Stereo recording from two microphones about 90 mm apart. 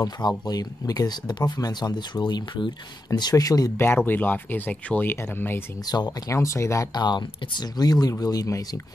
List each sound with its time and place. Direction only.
0.5 s speech: 45° left (ahead or behind)
3.2 s speech: 45° left (ahead or behind)
3.7 s speech: 25° left (ahead or behind)
5.9 s speech: 50° left (ahead or behind)
6.3 s speech: 35° left (ahead or behind)
6.9 s speech: 50° left (ahead or behind)